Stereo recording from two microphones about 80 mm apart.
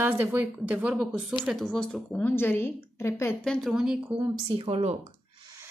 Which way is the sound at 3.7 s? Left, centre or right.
Centre.